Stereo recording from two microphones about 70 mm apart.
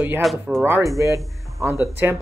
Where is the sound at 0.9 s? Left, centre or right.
Right.